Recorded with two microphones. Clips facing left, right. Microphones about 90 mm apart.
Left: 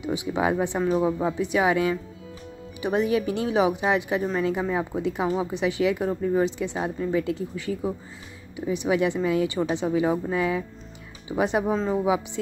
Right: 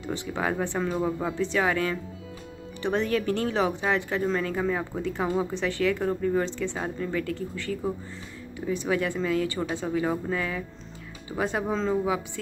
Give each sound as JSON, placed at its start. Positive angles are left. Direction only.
{"t": 0.0, "sound": "a woman's voice", "side_deg": 15}